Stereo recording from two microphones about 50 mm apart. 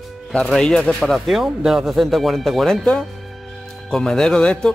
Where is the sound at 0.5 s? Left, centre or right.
Centre.